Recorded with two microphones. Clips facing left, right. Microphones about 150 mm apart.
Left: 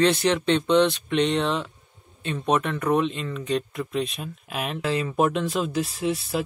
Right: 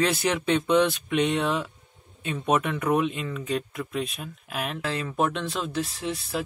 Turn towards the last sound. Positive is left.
turn(degrees=5)  # may be behind; listen again after turning